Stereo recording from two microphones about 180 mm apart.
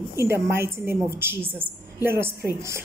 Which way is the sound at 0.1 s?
15° right (ahead or behind).